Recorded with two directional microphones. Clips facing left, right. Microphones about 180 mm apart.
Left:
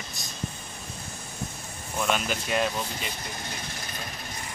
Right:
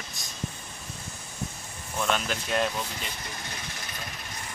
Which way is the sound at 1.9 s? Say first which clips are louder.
Left 1 dB; 10° left (ahead or behind).